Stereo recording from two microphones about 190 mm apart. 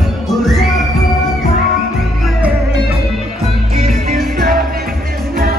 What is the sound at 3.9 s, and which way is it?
Music, 50° right (ahead or behind).